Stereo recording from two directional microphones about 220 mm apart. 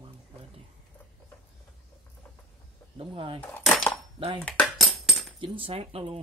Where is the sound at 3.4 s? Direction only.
5° left (ahead or behind).